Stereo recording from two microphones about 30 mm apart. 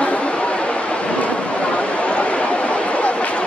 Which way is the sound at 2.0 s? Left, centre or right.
Left.